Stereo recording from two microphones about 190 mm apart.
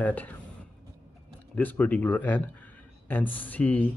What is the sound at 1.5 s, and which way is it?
Speech, 10° left (ahead or behind).